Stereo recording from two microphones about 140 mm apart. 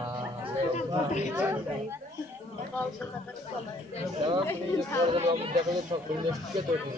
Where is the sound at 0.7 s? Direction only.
55° left (ahead or behind).